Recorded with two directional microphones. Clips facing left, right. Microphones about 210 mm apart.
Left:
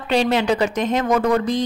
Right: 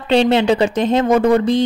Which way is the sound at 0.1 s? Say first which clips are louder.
Right 5 dB; 25° right (ahead or behind).